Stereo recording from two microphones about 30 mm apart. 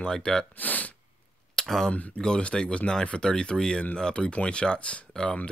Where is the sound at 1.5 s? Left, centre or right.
Centre.